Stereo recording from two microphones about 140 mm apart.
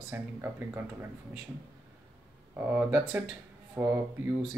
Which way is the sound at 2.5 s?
15° right (ahead or behind).